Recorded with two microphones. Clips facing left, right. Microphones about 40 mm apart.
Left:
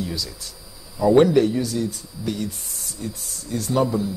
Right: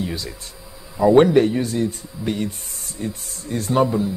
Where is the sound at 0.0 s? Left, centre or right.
Right.